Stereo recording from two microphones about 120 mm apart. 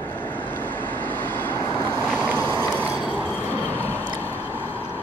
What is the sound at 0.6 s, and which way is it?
Vehicle, 15° left (ahead or behind).